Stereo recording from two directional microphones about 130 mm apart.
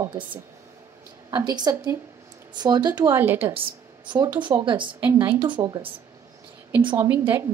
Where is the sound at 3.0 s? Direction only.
15° right (ahead or behind).